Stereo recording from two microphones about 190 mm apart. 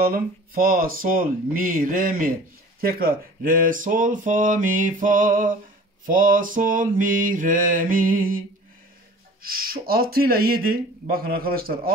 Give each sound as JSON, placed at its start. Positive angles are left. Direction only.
{"t": 0.0, "sound": "speech", "side_deg": -50}
{"t": 9.4, "sound": "speech", "side_deg": -50}